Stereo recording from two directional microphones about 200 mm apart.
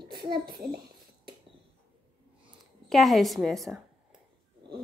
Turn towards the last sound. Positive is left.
turn(degrees=0)  # may be behind; listen again after turning